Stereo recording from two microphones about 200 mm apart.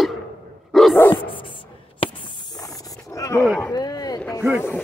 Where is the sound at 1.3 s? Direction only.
25° left (ahead or behind).